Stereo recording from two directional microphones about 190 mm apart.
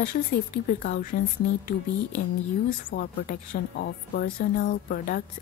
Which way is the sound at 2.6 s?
50° left (ahead or behind).